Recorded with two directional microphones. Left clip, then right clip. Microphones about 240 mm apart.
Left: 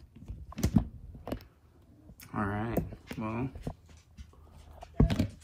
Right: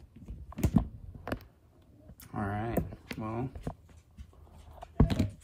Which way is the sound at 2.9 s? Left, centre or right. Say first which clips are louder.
Right 1 dB; left.